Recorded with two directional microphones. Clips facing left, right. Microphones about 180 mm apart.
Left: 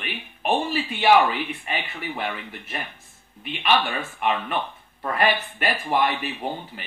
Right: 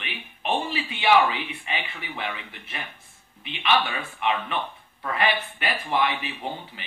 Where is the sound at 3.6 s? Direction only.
45° left (ahead or behind).